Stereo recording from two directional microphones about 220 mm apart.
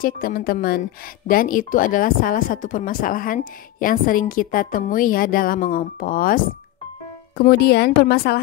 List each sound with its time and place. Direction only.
0.0 s a woman's voice: 40° left (ahead or behind)